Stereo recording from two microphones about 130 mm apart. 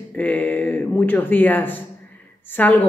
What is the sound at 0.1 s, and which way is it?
Speech, 10° left (ahead or behind).